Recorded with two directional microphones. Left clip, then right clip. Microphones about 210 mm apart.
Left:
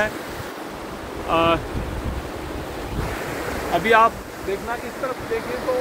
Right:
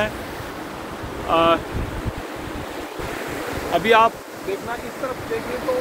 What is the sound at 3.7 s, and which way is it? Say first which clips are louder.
Speech: even; 60° right (ahead or behind).